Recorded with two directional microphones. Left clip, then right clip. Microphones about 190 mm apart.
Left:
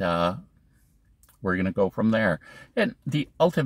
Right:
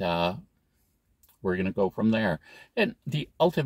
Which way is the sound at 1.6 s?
30° left (ahead or behind).